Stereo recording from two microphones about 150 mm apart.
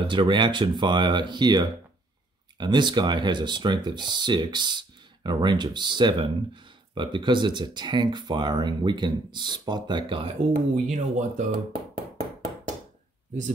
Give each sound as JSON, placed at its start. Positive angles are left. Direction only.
{"t": 0.1, "sound": "speech", "side_deg": -30}
{"t": 10.5, "sound": "speech", "side_deg": -60}